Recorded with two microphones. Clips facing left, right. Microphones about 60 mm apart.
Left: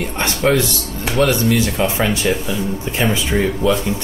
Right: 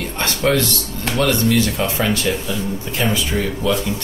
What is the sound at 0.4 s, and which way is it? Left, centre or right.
Speech, centre.